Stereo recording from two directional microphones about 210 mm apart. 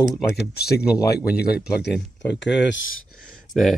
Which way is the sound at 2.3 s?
55° left (ahead or behind).